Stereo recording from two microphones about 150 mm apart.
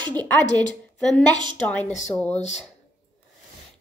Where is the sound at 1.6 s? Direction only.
10° left (ahead or behind).